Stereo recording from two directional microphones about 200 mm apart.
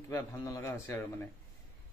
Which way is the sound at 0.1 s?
15° left (ahead or behind).